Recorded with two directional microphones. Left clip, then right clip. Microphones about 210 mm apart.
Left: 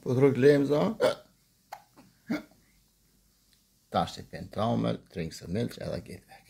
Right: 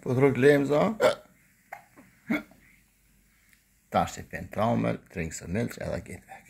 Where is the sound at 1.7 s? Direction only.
10° left (ahead or behind).